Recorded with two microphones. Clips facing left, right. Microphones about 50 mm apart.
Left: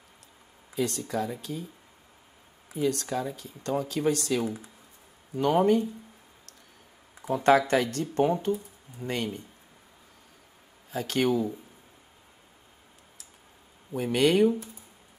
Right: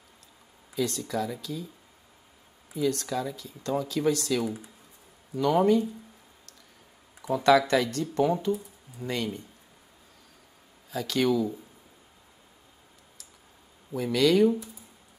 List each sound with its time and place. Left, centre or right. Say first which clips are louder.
0.7 s speech: even; left
2.7 s speech: even; left
7.2 s speech: even; left
10.9 s speech: even; left
13.9 s speech: even; left